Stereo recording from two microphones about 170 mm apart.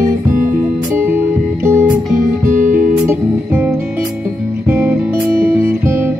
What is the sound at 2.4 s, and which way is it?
Music, 50° right (ahead or behind).